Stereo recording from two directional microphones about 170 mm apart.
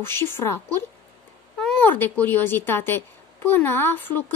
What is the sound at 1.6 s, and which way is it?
Speech, 5° left (ahead or behind).